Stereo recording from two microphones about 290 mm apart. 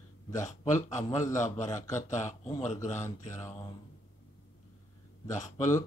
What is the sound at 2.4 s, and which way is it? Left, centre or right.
Speech, left.